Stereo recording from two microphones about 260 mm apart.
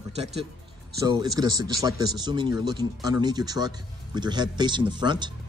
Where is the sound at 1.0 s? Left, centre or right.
Centre.